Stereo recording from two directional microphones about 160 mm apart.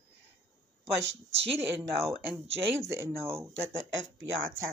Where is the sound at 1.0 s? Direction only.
40° right (ahead or behind).